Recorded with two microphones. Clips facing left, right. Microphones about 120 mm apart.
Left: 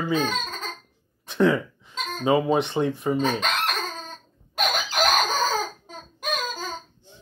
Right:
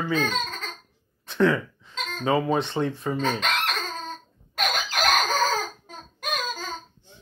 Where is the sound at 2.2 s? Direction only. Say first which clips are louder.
Left 2 dB; 15° left (ahead or behind).